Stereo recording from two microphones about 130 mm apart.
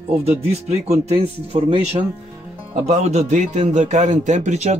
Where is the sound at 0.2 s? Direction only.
55° right (ahead or behind).